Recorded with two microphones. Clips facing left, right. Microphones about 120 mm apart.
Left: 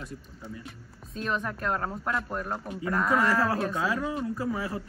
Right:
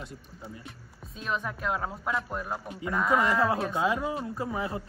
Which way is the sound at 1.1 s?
Centre (ahead or behind).